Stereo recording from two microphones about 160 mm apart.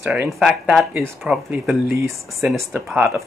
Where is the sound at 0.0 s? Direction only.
10° right (ahead or behind).